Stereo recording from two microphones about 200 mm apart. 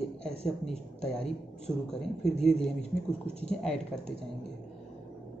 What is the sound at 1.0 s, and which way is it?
A woman's voice, 5° left (ahead or behind).